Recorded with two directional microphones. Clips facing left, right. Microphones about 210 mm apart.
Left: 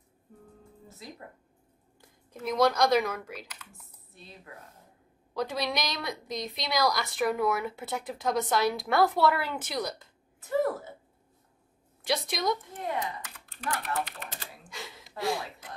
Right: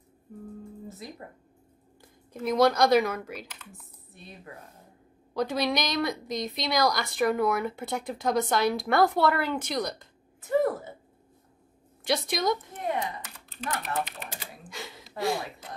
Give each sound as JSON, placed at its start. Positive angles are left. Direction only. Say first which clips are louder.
{"t": 2.0, "sound": "a woman's voice", "louder": "right 5 dB", "side_deg": 0}
{"t": 5.3, "sound": "a woman's voice", "louder": "right 4 dB", "side_deg": 0}
{"t": 12.0, "sound": "a woman's voice", "louder": "right 3 dB", "side_deg": 0}
{"t": 13.5, "sound": "speech", "louder": "right 1 dB", "side_deg": -20}
{"t": 14.7, "sound": "a sound", "louder": "right 2 dB", "side_deg": 0}
{"t": 15.1, "sound": "a woman's voice", "louder": "right 2 dB", "side_deg": 0}